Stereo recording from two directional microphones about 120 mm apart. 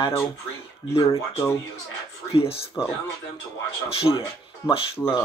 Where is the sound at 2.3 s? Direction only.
50° left (ahead or behind).